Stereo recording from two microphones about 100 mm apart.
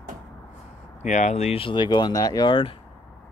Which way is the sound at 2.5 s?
65° left (ahead or behind).